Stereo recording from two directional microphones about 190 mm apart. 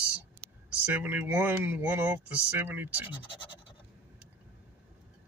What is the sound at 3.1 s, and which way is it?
Speech, 25° left (ahead or behind).